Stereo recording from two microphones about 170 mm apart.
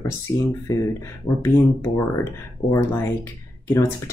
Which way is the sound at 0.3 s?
20° left (ahead or behind).